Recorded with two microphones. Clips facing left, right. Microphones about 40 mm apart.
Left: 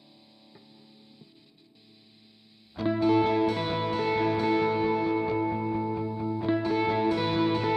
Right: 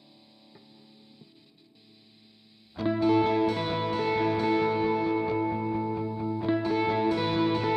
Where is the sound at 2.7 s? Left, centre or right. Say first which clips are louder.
Even; centre.